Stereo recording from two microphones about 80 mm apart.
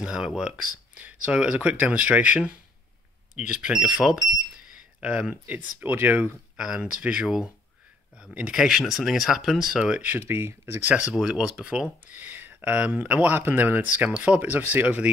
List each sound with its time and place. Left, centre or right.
0.0 s speech: centre
8.5 s speech: centre
9.9 s speech: right
11.1 s speech: centre